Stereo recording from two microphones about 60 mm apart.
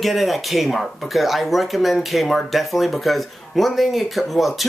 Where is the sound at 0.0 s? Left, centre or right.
Centre.